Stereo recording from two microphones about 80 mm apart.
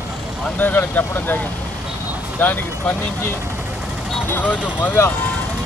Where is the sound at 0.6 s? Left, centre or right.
Left.